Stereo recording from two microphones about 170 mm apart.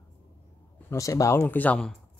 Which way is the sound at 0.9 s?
20° left (ahead or behind).